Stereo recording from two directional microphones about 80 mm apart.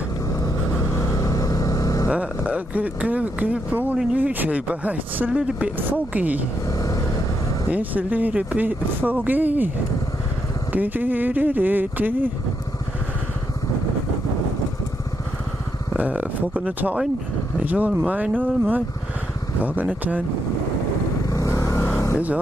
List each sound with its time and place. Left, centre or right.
0.4 s vehicle: left
2.0 s speech: centre
6.7 s vehicle: left
7.7 s speech: centre
10.7 s speech: right
16.0 s speech: centre
21.3 s vehicle: left